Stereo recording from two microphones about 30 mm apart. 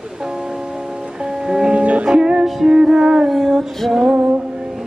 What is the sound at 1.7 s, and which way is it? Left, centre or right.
Music, right.